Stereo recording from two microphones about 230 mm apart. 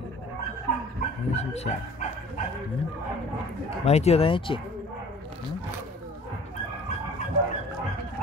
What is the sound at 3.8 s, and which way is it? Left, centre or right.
Speech, left.